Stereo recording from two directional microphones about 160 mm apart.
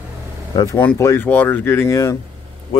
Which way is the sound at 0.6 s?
15° left (ahead or behind).